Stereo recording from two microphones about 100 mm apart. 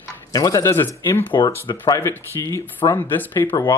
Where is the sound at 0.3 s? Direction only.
35° left (ahead or behind).